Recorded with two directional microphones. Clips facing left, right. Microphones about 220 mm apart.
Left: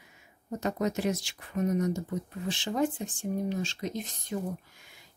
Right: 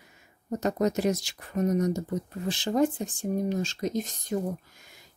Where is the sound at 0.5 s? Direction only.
40° right (ahead or behind).